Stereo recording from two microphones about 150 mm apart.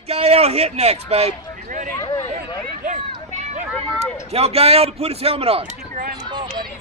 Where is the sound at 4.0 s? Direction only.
45° right (ahead or behind).